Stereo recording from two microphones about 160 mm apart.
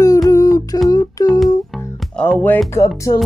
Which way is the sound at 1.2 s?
25° left (ahead or behind).